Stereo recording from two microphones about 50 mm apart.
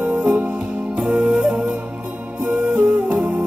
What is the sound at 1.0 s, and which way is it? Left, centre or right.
Flute, centre.